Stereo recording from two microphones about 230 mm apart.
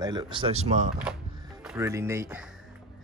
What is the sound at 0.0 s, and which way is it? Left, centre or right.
Speech, centre.